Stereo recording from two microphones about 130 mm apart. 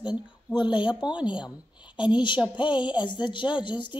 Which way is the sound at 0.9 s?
10° right (ahead or behind).